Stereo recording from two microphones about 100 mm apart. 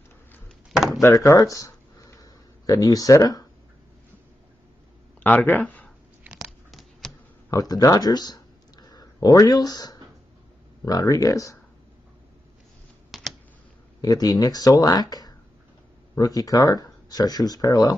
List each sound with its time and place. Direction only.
0.7 s drawer open or close: 5° right (ahead or behind)
1.2 s a sound: 35° left (ahead or behind)
5.2 s speech: 15° left (ahead or behind)
6.2 s a sound: 5° right (ahead or behind)
7.5 s speech: 40° left (ahead or behind)
13.1 s computer keyboard: centre (ahead or behind)
14.0 s speech: 40° left (ahead or behind)